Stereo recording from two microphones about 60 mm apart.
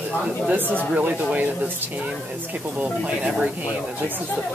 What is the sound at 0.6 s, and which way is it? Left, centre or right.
Speech, left.